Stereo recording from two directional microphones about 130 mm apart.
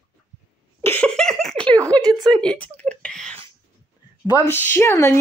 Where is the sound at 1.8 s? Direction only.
30° right (ahead or behind).